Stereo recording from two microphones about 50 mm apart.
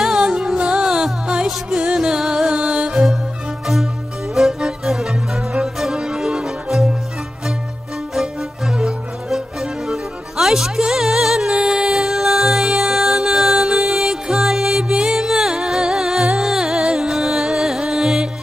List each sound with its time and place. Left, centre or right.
0.0 s music: centre
2.5 s music: right
2.9 s music: centre
4.4 s music: centre
8.1 s music: centre